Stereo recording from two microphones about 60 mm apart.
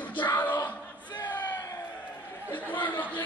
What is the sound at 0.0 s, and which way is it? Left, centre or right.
Music, left.